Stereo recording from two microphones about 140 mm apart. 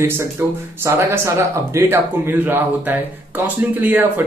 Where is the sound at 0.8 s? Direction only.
20° right (ahead or behind).